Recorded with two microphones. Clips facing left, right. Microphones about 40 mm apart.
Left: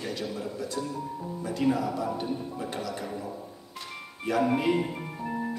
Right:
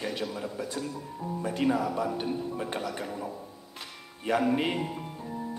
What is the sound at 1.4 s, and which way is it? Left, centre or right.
A man's voice, right.